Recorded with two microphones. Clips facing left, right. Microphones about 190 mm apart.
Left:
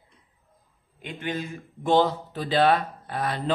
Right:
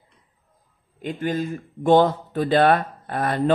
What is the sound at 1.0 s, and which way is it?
Speech, 45° right (ahead or behind).